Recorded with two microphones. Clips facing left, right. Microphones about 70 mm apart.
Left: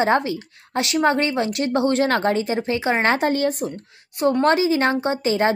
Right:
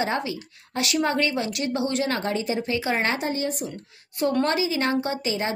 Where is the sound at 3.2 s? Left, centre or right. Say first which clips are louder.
Left 7 dB; left.